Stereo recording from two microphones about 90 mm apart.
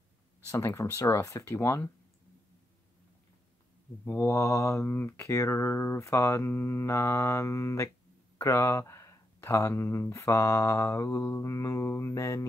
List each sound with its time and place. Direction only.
0.5 s speech: 30° left (ahead or behind)
4.0 s speech: 25° left (ahead or behind)